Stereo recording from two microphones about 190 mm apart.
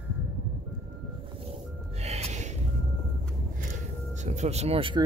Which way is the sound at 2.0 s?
35° right (ahead or behind).